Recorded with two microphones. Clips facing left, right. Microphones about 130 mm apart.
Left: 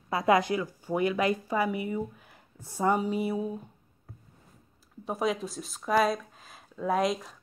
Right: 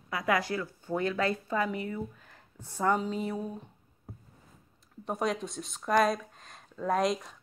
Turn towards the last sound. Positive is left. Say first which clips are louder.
# left 1 dB
turn(degrees=0)  # may be behind; listen again after turning